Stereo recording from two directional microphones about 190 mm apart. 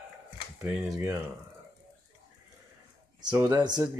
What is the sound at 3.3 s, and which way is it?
Speech, 20° right (ahead or behind).